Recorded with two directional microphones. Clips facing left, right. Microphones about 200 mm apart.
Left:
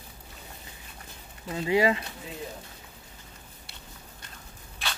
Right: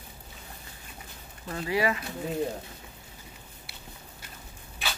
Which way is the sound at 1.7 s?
25° left (ahead or behind).